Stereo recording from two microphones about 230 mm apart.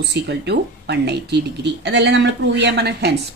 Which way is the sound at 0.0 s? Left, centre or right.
Right.